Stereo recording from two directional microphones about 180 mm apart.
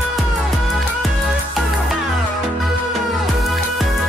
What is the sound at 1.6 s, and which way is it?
Music, centre (ahead or behind).